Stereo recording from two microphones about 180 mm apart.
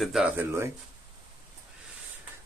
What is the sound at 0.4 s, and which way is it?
Speech, 15° right (ahead or behind).